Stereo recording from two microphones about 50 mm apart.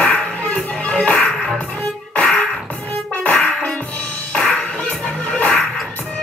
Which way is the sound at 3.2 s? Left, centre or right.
Left.